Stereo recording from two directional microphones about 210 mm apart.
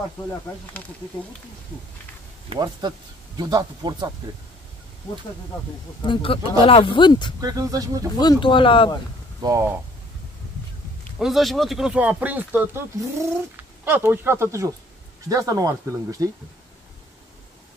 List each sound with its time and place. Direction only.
2.5 s speech: 20° right (ahead or behind)
6.0 s speech: 25° left (ahead or behind)
7.3 s speech: 15° right (ahead or behind)
8.2 s speech: 20° left (ahead or behind)
9.4 s speech: 15° right (ahead or behind)
11.1 s speech: centre (ahead or behind); by 16.3 s 15° right (ahead or behind)